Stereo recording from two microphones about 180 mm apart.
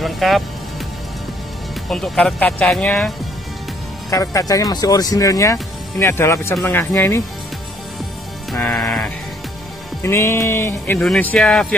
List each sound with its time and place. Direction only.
0.0 s speech: centre (ahead or behind)
1.9 s speech: 5° left (ahead or behind)
4.1 s speech: 20° left (ahead or behind)
8.5 s music: 5° left (ahead or behind)
10.0 s speech: 15° left (ahead or behind)